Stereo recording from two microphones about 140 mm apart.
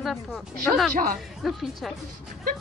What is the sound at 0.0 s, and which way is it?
Speech, centre (ahead or behind).